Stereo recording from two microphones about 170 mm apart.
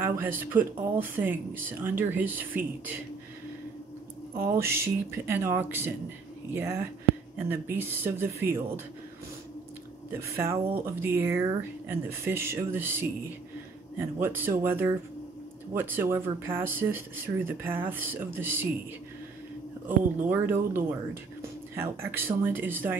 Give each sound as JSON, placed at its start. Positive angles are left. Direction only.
{"t": 0.0, "sound": "speech", "side_deg": -10}
{"t": 4.4, "sound": "speech", "side_deg": -15}
{"t": 10.1, "sound": "speech", "side_deg": -15}
{"t": 20.2, "sound": "speech", "side_deg": -10}